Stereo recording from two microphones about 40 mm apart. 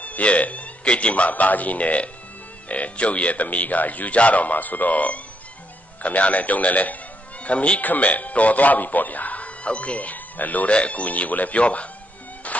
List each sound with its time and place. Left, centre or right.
0.0 s a man's voice: left
7.4 s speech: left
7.8 s speech: left
10.7 s speech: left